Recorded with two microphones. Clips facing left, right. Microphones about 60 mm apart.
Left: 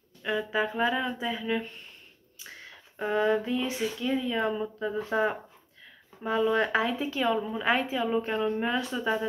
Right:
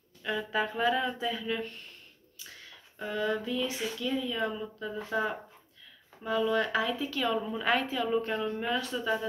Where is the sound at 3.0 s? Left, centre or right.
Left.